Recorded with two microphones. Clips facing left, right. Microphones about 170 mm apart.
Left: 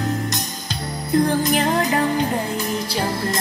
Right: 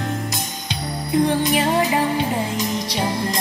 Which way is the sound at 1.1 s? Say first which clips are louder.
Even; centre (ahead or behind).